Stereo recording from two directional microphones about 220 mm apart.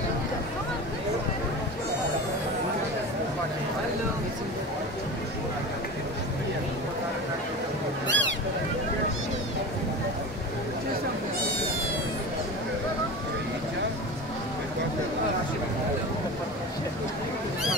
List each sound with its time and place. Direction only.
8.1 s boat: 55° right (ahead or behind)